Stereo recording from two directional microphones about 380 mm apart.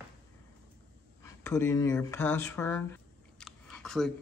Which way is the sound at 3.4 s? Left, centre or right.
Centre.